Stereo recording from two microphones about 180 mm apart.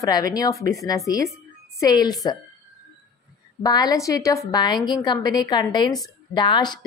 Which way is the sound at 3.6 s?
20° left (ahead or behind).